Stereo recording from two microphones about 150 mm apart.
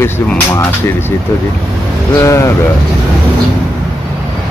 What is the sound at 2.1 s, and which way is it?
Speech, 20° left (ahead or behind).